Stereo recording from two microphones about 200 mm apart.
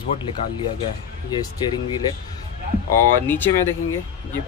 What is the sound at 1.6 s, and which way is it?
Speech, 20° left (ahead or behind).